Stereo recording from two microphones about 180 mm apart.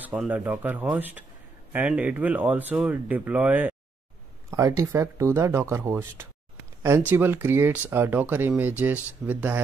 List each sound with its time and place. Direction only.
0.0 s speech: 10° right (ahead or behind)